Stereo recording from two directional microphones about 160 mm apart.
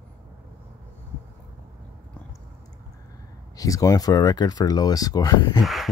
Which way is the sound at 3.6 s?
20° left (ahead or behind).